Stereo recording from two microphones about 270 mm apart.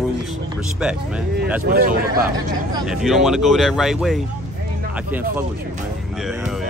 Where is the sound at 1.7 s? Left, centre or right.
Right.